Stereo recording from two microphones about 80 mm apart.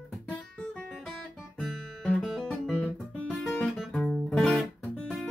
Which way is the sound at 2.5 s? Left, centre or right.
Centre.